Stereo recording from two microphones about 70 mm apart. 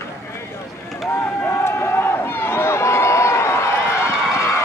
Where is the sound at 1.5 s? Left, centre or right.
Left.